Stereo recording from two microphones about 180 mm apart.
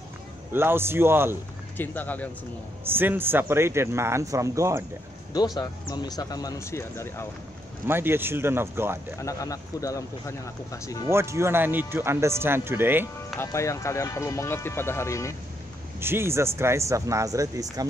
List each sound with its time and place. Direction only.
0.5 s speech: 10° right (ahead or behind)
1.8 s speech: 10° left (ahead or behind)
2.8 s speech: 10° right (ahead or behind)
5.3 s speech: 20° left (ahead or behind)
7.8 s speech: 10° right (ahead or behind)
9.2 s speech: 20° left (ahead or behind)
11.1 s speech: 15° right (ahead or behind)
13.0 s speech: 15° left (ahead or behind)
16.0 s speech: 15° right (ahead or behind)